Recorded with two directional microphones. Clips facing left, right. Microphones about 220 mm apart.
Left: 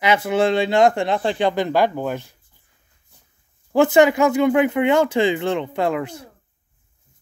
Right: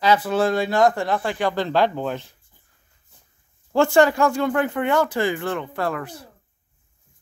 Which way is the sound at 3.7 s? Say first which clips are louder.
Left 2 dB; 20° left (ahead or behind).